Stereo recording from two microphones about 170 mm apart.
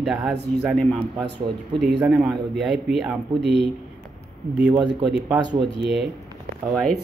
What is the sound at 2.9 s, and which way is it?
Speech, 5° right (ahead or behind).